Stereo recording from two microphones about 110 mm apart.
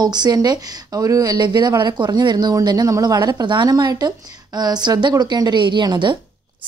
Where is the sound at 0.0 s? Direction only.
40° right (ahead or behind).